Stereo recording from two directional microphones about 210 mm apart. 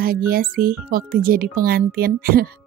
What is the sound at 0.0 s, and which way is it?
Speech, 45° right (ahead or behind).